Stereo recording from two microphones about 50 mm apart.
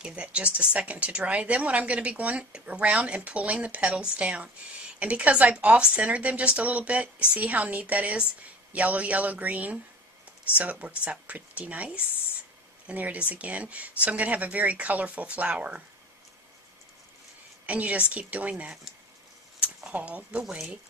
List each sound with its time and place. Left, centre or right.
0.0 s speech: right
17.6 s speech: right
19.6 s a sound: right
20.4 s speech: centre